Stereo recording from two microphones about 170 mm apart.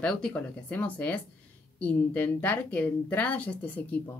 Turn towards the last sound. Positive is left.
turn(degrees=10)  # may be behind; listen again after turning